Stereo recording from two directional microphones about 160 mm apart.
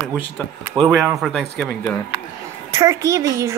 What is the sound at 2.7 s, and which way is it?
Speech, 20° right (ahead or behind).